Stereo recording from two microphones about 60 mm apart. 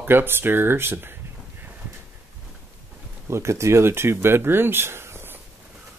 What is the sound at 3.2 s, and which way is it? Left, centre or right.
Speech, right.